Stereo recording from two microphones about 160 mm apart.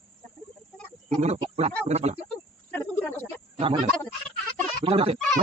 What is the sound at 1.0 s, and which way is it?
Speech, 40° right (ahead or behind).